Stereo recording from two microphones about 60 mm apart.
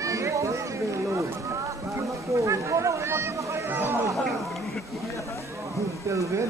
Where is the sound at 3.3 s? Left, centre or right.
Right.